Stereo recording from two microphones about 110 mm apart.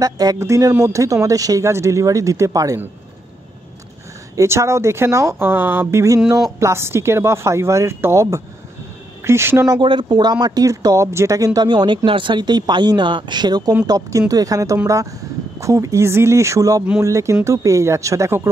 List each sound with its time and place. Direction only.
0.0 s speech: 35° right (ahead or behind)
4.4 s speech: 25° right (ahead or behind)
9.7 s speech: 45° right (ahead or behind); by 18.5 s 25° right (ahead or behind)